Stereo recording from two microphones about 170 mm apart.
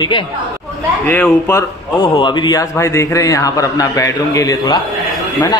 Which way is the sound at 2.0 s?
30° left (ahead or behind).